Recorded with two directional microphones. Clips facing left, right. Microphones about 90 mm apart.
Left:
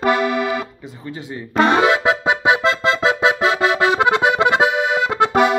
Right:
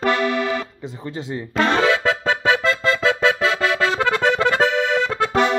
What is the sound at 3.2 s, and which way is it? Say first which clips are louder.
Accordion: left 4 dB; 20° left (ahead or behind).